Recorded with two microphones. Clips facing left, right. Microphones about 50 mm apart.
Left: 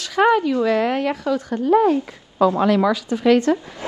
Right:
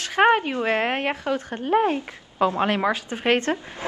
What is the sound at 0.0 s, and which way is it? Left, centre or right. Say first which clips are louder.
Speech: left 2 dB; right.